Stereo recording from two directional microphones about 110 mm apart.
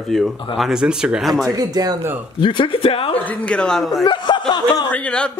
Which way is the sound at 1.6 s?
35° right (ahead or behind).